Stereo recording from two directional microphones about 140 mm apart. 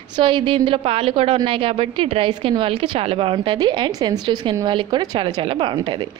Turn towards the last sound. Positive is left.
turn(degrees=-35)  # may be behind; listen again after turning